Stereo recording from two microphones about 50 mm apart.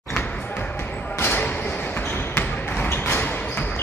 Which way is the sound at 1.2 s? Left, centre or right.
Left.